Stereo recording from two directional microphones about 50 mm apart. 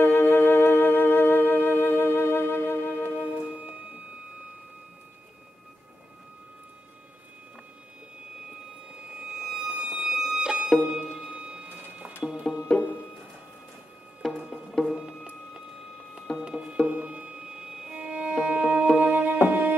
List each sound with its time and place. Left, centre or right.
0.0 s music: left
3.4 s music: right
9.2 s music: centre
12.7 s music: centre
14.2 s music: centre
16.3 s music: centre
16.8 s violin: right
18.4 s music: right